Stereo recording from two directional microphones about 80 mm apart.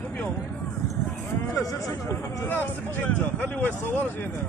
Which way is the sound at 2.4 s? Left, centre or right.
Left.